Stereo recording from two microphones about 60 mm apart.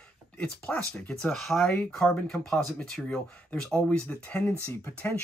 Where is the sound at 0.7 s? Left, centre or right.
Left.